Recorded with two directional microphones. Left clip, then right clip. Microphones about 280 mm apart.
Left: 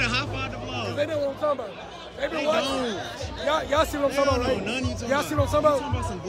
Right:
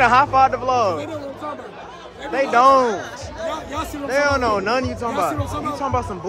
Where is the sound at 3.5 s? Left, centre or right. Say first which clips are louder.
Left 6 dB; centre.